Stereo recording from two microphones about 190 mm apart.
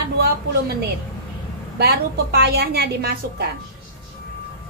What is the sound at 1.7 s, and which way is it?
A woman's voice, 55° right (ahead or behind).